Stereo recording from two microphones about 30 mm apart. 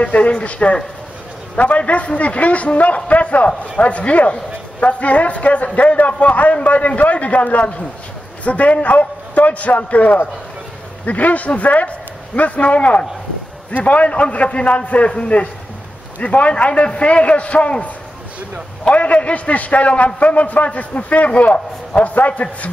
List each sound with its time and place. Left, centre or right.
0.0 s a man's voice: left
18.9 s a man's voice: left